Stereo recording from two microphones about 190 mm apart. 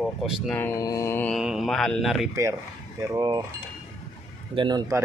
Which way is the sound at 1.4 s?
5° right (ahead or behind).